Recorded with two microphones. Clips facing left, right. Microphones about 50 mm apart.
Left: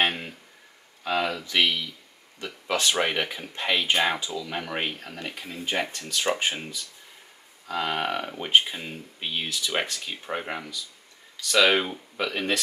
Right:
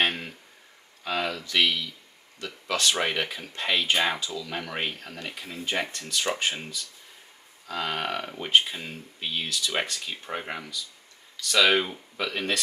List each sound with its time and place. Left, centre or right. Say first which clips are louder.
0.0 s a sound: left 1 dB; centre
1.0 s speech: left 3 dB; centre
4.2 s speech: left 1 dB; left
4.5 s speech: left 2 dB; centre